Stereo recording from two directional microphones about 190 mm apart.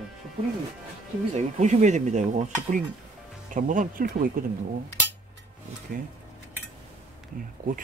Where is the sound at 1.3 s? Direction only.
35° right (ahead or behind).